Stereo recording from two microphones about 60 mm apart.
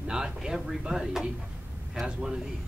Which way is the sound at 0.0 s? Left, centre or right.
Centre.